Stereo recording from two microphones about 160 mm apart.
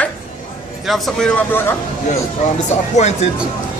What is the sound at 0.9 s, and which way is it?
Speech, centre (ahead or behind).